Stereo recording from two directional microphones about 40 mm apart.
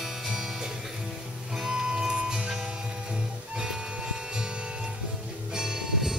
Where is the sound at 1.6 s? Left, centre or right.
Centre.